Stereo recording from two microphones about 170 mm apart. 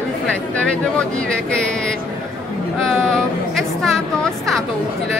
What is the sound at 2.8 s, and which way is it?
A woman's voice, 5° left (ahead or behind).